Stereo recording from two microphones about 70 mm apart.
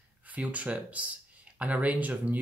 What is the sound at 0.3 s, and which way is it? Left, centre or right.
Speech, right.